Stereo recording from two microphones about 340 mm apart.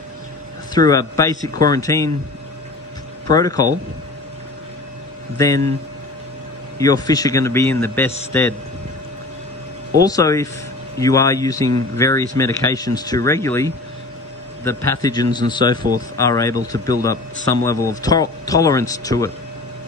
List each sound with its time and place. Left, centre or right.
0.7 s a man's voice: centre
3.3 s a man's voice: centre
6.8 s a man's voice: centre
9.9 s a man's voice: centre